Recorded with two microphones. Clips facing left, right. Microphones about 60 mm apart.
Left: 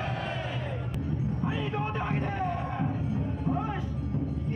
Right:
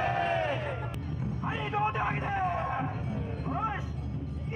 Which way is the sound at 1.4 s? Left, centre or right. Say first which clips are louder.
Right 4 dB; centre.